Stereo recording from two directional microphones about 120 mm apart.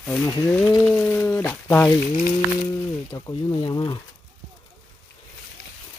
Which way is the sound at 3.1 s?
30° left (ahead or behind).